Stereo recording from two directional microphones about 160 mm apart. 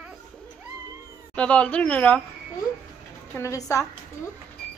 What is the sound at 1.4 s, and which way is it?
Speech, 5° left (ahead or behind).